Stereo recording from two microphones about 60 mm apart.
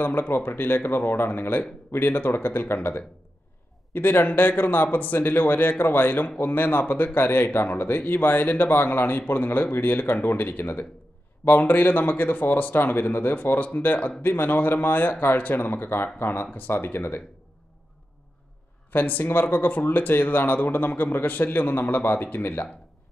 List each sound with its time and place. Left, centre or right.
0.0 s speech: left
18.9 s speech: left